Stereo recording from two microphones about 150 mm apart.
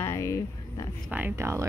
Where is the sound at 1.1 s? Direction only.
15° right (ahead or behind).